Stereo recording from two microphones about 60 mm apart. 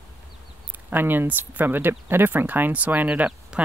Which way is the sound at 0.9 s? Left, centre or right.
Right.